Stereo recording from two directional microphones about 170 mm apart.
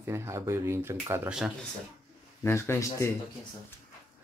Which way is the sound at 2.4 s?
15° left (ahead or behind).